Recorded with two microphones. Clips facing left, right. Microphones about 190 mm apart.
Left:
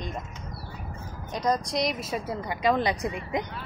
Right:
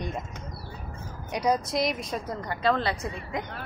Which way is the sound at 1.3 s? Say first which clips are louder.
Right 1 dB; 10° right (ahead or behind).